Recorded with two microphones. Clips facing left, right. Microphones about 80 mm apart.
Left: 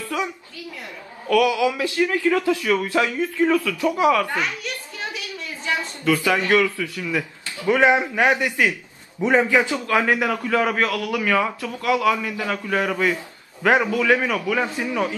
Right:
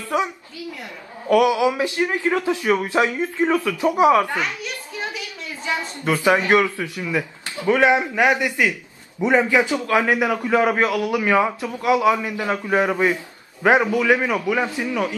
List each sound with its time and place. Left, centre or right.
0.1 s a sound: right
1.3 s a man's voice: right
6.0 s a man's voice: right
7.7 s speech: left
8.3 s a man's voice: centre
14.8 s speech: centre